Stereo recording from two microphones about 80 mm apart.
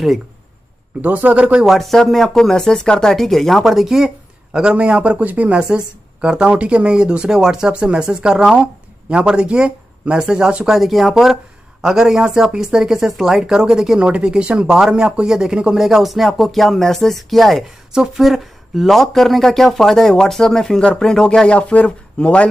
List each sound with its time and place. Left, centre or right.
1.0 s speech: centre
1.7 s speech: centre